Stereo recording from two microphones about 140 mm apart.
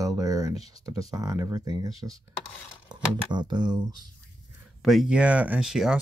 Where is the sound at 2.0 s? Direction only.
Centre (ahead or behind).